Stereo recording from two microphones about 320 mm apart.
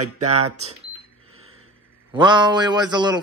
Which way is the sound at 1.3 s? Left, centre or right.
Right.